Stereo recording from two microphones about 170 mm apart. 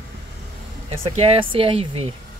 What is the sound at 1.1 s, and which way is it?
Speech, 35° right (ahead or behind).